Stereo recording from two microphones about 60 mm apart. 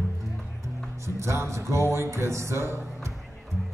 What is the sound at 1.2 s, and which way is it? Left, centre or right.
Music, right.